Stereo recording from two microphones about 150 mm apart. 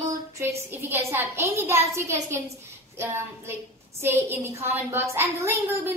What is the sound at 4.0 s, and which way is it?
A woman's voice, 15° right (ahead or behind).